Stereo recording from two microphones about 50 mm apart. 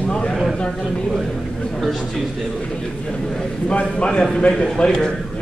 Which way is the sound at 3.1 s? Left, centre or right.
Centre.